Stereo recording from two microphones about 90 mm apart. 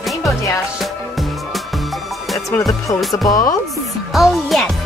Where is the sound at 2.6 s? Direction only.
35° left (ahead or behind).